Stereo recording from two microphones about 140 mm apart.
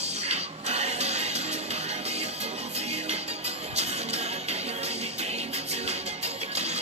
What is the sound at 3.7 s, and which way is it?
Music, 50° right (ahead or behind).